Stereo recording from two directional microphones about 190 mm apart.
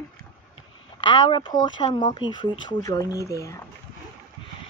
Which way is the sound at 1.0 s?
25° left (ahead or behind).